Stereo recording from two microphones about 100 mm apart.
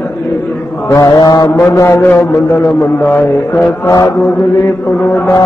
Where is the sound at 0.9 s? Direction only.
45° left (ahead or behind).